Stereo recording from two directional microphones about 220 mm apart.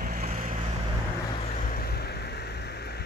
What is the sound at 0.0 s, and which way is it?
Vehicle, 35° right (ahead or behind).